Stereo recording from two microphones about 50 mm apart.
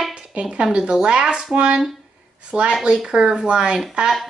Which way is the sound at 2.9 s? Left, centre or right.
Centre.